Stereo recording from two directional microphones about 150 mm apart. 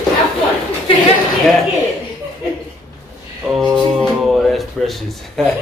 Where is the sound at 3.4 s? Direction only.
Centre (ahead or behind).